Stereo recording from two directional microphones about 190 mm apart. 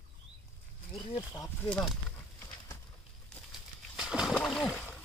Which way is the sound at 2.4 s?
20° left (ahead or behind).